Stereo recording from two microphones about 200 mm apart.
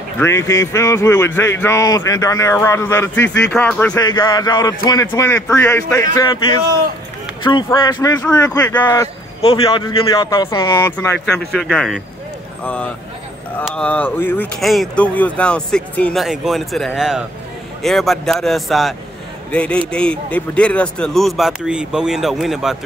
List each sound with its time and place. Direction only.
0.2 s speech: 15° left (ahead or behind)
3.9 s speech: 20° left (ahead or behind)
7.4 s a man's voice: 25° left (ahead or behind)
9.4 s a man's voice: 25° left (ahead or behind); by 22.8 s centre (ahead or behind)